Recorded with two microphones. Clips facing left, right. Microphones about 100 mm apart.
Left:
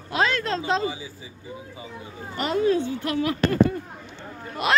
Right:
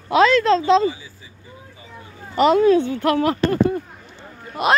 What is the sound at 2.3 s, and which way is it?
Speech, 90° right.